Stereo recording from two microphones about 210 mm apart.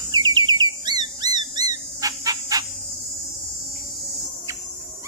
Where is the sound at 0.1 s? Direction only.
20° right (ahead or behind).